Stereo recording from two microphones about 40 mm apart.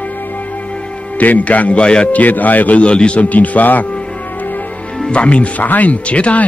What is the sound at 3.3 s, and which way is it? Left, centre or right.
Speech, left.